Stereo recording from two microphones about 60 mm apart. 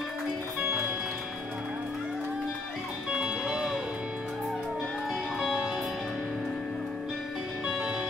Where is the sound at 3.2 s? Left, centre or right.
Centre.